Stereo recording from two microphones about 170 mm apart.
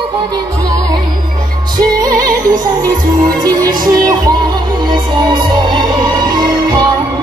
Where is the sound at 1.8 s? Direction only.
25° right (ahead or behind).